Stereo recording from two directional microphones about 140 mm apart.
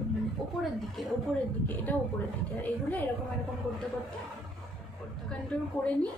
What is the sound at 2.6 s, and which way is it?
Speech, 10° left (ahead or behind).